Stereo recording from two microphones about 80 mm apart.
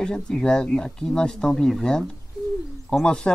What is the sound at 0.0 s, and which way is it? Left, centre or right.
Speech, centre.